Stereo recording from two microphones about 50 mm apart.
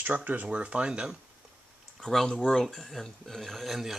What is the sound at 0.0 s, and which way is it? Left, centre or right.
Speech, right.